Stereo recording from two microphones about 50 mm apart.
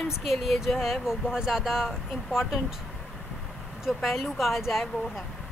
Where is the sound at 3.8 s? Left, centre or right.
Centre.